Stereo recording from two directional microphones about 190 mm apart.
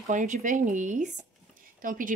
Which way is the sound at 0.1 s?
40° right (ahead or behind).